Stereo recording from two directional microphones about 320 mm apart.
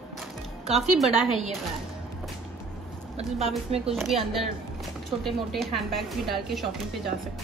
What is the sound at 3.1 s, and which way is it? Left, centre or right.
Speech, centre.